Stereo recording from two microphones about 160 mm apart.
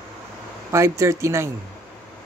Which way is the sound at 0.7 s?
15° right (ahead or behind).